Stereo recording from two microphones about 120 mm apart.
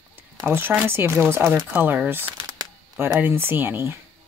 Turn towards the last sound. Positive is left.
turn(degrees=-20)  # may be behind; listen again after turning